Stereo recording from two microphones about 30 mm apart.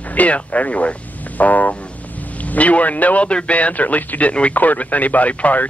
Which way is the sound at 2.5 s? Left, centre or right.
Left.